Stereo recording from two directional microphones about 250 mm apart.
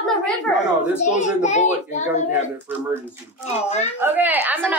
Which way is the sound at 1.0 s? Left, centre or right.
Left.